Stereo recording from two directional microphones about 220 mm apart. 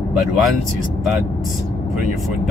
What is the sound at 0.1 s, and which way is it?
Speech, centre (ahead or behind).